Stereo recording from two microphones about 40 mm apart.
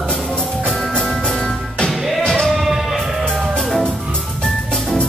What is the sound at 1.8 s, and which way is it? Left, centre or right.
Music, centre.